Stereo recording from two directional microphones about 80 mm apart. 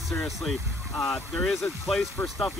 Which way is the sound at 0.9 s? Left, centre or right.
Left.